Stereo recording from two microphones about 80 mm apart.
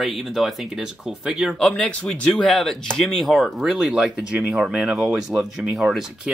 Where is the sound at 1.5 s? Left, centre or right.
Centre.